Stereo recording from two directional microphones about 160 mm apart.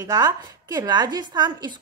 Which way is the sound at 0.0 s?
25° right (ahead or behind).